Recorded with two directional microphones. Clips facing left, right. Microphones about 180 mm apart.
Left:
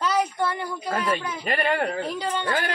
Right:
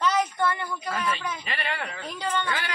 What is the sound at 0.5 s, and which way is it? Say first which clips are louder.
Speech: left 2 dB; 35° left (ahead or behind).